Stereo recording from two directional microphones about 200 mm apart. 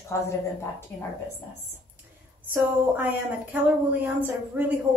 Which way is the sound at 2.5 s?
10° right (ahead or behind).